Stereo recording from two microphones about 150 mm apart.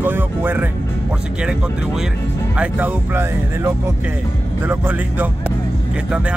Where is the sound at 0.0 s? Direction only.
15° right (ahead or behind).